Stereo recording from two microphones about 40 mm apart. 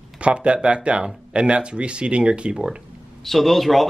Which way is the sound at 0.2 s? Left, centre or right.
Right.